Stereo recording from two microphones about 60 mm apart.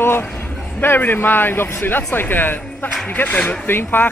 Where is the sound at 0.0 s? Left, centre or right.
Left.